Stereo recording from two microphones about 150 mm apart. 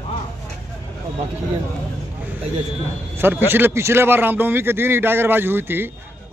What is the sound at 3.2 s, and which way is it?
A man's voice, 15° right (ahead or behind).